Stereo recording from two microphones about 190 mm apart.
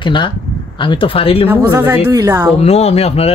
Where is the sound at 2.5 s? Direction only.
35° left (ahead or behind).